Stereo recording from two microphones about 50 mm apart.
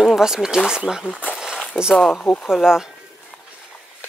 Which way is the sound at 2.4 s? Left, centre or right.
Centre.